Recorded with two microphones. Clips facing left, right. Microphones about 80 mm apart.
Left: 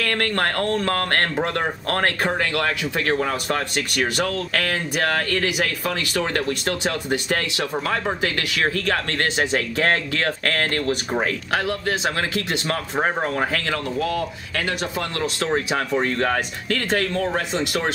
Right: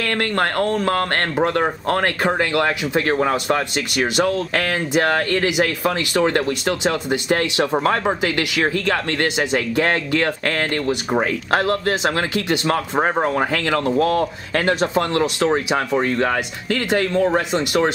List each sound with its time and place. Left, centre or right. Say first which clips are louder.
0.0 s speech: right 2 dB; right
2.0 s speech: right 1 dB; centre
4.2 s speech: right 4 dB; right
8.2 s speech: right 3 dB; centre
11.5 s speech: right 7 dB; right
12.9 s speech: right 2 dB; centre
13.9 s speech: right 6 dB; right
16.9 s speech: right 6 dB; centre